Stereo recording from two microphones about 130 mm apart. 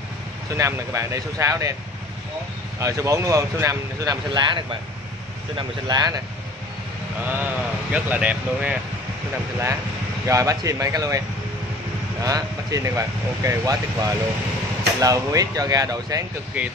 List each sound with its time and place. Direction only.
0.6 s speech: 25° right (ahead or behind)
2.8 s speech: 25° right (ahead or behind)
7.2 s speech: 15° right (ahead or behind)
10.2 s speech: 25° right (ahead or behind)
16.6 s speech: 15° right (ahead or behind)